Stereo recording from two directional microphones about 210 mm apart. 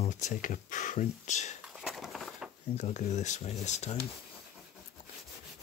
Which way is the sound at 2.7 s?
35° left (ahead or behind).